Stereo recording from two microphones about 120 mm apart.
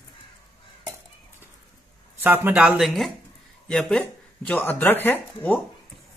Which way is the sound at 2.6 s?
Centre (ahead or behind).